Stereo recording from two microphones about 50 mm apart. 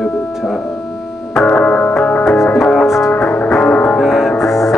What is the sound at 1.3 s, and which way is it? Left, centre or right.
Music, centre.